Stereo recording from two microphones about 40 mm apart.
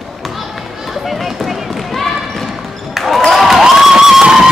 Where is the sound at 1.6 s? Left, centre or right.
Centre.